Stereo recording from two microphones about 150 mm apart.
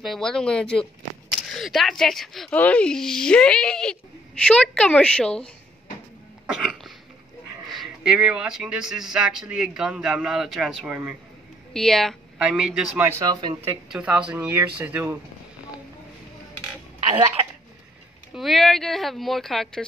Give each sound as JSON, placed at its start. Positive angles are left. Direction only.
{"t": 0.0, "sound": "speech", "side_deg": 0}
{"t": 6.5, "sound": "cough", "side_deg": 0}
{"t": 7.6, "sound": "speech", "side_deg": 0}
{"t": 11.7, "sound": "speech", "side_deg": 5}
{"t": 13.2, "sound": "speech", "side_deg": -30}
{"t": 13.9, "sound": "speech", "side_deg": -5}
{"t": 18.3, "sound": "speech", "side_deg": 0}